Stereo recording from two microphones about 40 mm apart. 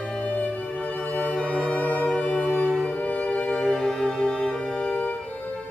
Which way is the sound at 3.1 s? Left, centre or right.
Left.